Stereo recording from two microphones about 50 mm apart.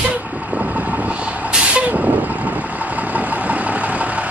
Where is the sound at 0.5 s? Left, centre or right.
Right.